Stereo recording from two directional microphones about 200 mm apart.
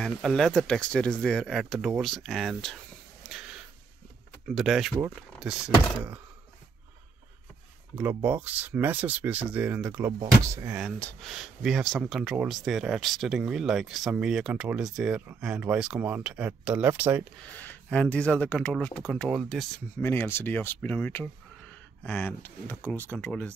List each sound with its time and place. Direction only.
0.0 s speech: centre (ahead or behind)
3.3 s a sound: 5° right (ahead or behind)
4.6 s speech: centre (ahead or behind)
8.0 s speech: 10° right (ahead or behind)
10.8 s speech: 5° left (ahead or behind)
17.6 s speech: 10° left (ahead or behind)